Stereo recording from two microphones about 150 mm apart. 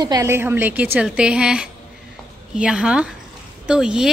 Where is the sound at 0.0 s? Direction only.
25° right (ahead or behind).